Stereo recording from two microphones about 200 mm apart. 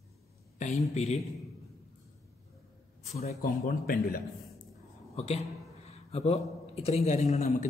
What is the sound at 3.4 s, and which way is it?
Speech, 45° left (ahead or behind).